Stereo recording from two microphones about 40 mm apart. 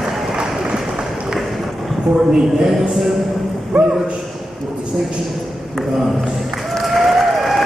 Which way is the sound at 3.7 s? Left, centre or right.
Right.